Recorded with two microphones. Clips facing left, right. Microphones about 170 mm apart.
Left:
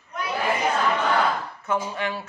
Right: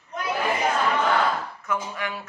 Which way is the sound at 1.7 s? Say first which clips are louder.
Left 4 dB; 30° left (ahead or behind).